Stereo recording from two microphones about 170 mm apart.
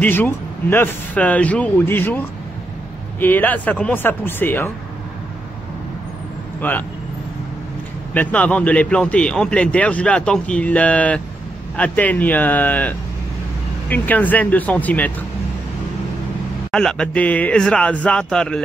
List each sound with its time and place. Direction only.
0.0 s speech: 10° left (ahead or behind)
6.6 s speech: 10° left (ahead or behind)
8.1 s speech: 10° left (ahead or behind)
16.7 s speech: 5° left (ahead or behind)